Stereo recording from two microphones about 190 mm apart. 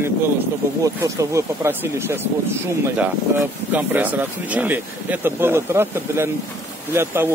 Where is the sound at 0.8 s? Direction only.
15° right (ahead or behind).